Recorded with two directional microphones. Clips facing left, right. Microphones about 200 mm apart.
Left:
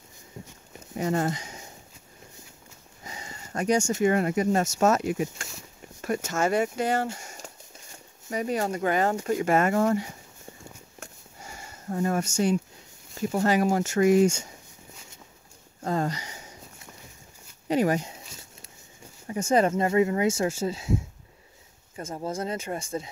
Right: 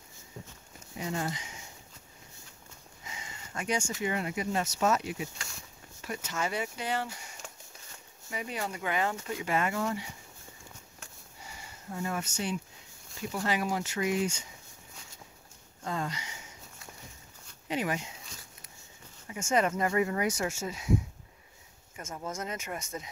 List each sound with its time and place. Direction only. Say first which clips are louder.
0.9 s speech: left 8 dB; 50° left (ahead or behind)
3.0 s speech: left 5 dB; 40° left (ahead or behind)
7.2 s a sound: left 4 dB; 40° left (ahead or behind)
8.3 s speech: left 9 dB; 40° left (ahead or behind)
11.0 s sniff: left 6 dB; 45° left (ahead or behind)
13.2 s speech: left 8 dB; 45° left (ahead or behind)
15.8 s a sound: left 7 dB; 40° left (ahead or behind)
17.6 s speech: left 9 dB; 40° left (ahead or behind)
19.2 s speech: left 6 dB; 35° left (ahead or behind)
21.9 s speech: left 6 dB; 30° left (ahead or behind)